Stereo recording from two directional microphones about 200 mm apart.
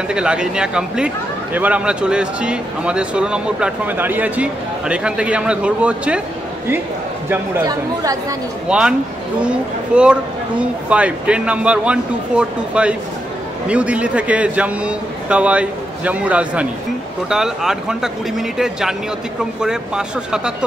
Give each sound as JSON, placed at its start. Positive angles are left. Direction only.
{"t": 0.1, "sound": "a man's voice", "side_deg": -5}
{"t": 7.2, "sound": "a man's voice", "side_deg": -15}
{"t": 8.6, "sound": "a man's voice", "side_deg": -5}